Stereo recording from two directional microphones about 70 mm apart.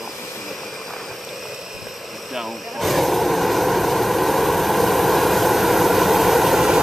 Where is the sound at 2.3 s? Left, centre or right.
Centre.